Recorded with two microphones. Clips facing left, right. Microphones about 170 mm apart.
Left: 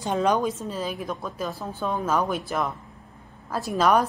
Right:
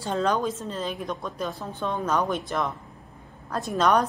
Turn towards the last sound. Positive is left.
turn(degrees=5)  # may be behind; listen again after turning